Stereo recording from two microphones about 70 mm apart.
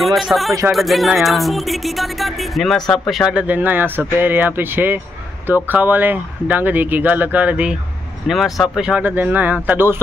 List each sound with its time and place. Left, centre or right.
0.0 s speech: centre
3.4 s speech: right
8.3 s speech: centre
9.0 s speech: right